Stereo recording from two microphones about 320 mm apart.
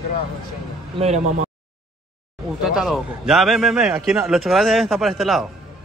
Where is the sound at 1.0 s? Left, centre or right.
Right.